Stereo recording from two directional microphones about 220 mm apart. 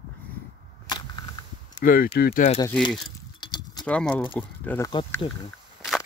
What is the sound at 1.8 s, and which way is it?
Speech, 40° left (ahead or behind).